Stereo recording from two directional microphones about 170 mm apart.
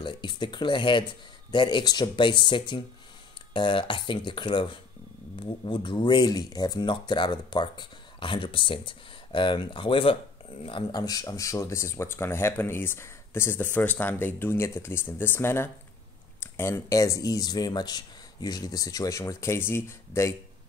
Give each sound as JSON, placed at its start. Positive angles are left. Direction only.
{"t": 0.0, "sound": "speech", "side_deg": 25}